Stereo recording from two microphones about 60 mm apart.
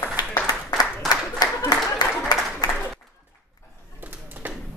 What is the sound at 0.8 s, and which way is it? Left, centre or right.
Applause, left.